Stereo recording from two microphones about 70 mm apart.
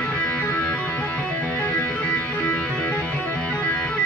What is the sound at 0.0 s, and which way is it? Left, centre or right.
Music, centre.